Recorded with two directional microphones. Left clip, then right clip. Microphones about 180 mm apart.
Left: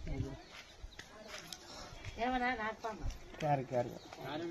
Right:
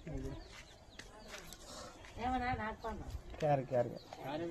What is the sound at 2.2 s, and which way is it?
Speech, 50° left (ahead or behind).